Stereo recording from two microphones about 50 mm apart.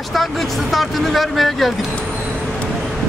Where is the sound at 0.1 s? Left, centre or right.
Centre.